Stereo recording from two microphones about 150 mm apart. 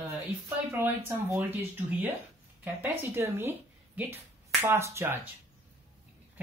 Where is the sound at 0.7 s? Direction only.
15° right (ahead or behind).